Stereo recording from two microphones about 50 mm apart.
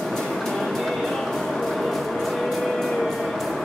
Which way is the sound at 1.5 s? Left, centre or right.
Centre.